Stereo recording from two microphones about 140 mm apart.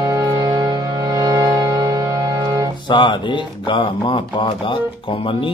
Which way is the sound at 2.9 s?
35° left (ahead or behind).